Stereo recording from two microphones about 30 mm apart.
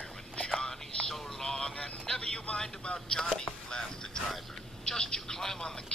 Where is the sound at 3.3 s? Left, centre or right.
Left.